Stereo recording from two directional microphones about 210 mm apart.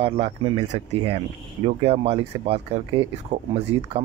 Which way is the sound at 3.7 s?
70° right (ahead or behind).